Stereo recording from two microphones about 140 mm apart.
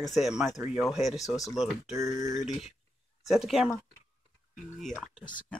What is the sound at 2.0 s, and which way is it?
Speech, 55° left (ahead or behind).